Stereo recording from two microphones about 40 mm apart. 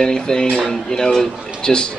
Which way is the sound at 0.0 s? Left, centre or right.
Centre.